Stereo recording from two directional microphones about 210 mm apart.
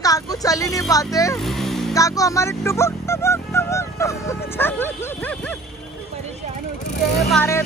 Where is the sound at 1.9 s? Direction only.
15° left (ahead or behind).